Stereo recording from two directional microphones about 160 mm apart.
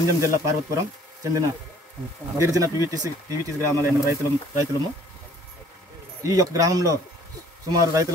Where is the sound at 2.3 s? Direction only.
20° right (ahead or behind).